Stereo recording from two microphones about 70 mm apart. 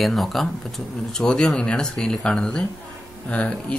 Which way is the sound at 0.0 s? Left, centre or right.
Centre.